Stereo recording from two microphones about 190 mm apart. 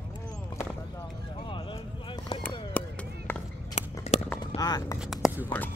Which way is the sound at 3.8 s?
40° left (ahead or behind).